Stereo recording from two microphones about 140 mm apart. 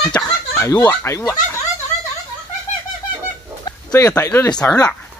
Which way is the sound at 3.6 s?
25° left (ahead or behind).